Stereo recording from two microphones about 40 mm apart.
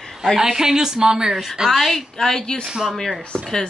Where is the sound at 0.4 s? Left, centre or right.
Centre.